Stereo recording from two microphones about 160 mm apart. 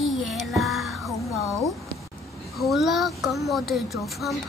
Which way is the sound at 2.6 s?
Centre (ahead or behind).